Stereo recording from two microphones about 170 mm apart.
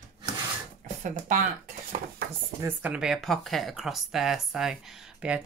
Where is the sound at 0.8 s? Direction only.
50° right (ahead or behind).